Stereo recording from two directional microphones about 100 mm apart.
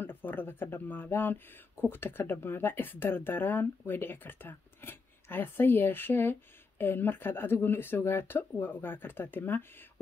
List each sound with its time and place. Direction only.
0.0 s speech: 20° left (ahead or behind)